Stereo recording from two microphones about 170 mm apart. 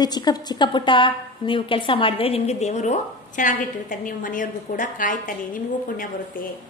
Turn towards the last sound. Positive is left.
turn(degrees=55)  # may be behind; listen again after turning